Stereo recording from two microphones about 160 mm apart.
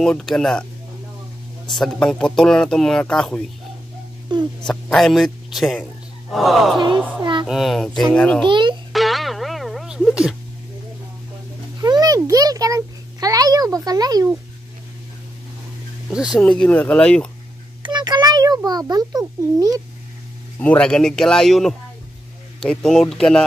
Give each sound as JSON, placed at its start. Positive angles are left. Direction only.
{"t": 0.0, "sound": "speech", "side_deg": 5}
{"t": 1.7, "sound": "speech", "side_deg": 5}
{"t": 4.3, "sound": "speech", "side_deg": -30}
{"t": 4.6, "sound": "speech", "side_deg": 0}
{"t": 8.5, "sound": "a child's voice", "side_deg": -30}
{"t": 8.9, "sound": "music", "side_deg": 0}
{"t": 11.8, "sound": "a sound", "side_deg": -25}
{"t": 16.1, "sound": "speech", "side_deg": -5}
{"t": 16.4, "sound": "speech", "side_deg": 5}
{"t": 17.8, "sound": "a child's voice", "side_deg": -25}
{"t": 20.5, "sound": "speech", "side_deg": 10}